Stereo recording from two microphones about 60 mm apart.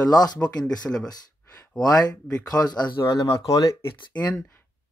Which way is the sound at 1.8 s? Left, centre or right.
Left.